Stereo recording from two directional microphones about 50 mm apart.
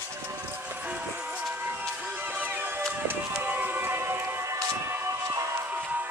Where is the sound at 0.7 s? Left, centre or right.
Right.